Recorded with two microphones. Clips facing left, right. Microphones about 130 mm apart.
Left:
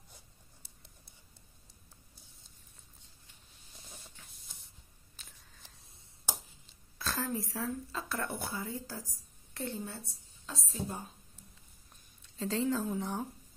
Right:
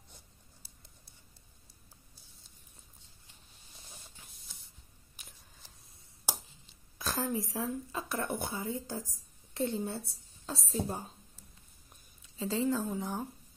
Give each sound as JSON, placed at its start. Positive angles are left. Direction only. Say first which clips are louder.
{"t": 5.1, "sound": "a sound", "louder": "right 1 dB", "side_deg": -10}
{"t": 7.0, "sound": "speech", "louder": "right 2 dB", "side_deg": -15}
{"t": 12.4, "sound": "a woman's voice", "louder": "right 1 dB", "side_deg": -5}